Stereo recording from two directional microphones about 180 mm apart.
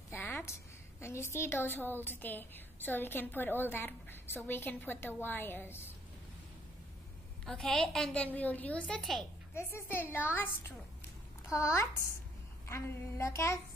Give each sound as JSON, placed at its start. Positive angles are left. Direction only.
{"t": 0.1, "sound": "a sound", "side_deg": 10}
{"t": 1.0, "sound": "a woman's voice", "side_deg": 15}
{"t": 7.4, "sound": "a woman's voice", "side_deg": 5}